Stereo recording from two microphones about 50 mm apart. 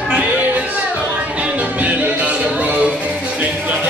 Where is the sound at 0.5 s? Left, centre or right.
Right.